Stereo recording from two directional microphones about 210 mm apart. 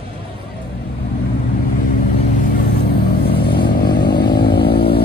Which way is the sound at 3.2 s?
45° left (ahead or behind).